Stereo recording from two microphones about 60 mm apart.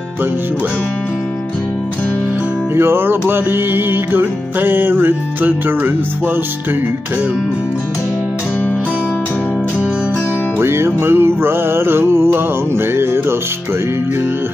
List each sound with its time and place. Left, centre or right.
2.7 s music: right
10.6 s music: right